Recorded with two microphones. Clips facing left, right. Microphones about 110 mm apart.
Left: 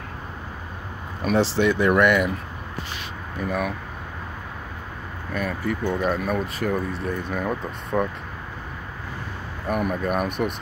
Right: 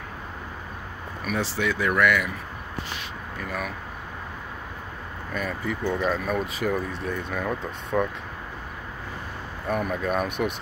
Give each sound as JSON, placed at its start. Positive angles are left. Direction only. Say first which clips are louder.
{"t": 1.2, "sound": "speech", "louder": "left 7 dB", "side_deg": 30}
{"t": 3.3, "sound": "speech", "louder": "left 7 dB", "side_deg": 15}
{"t": 5.3, "sound": "speech", "louder": "left 3 dB", "side_deg": 5}
{"t": 9.7, "sound": "speech", "louder": "left 2 dB", "side_deg": 10}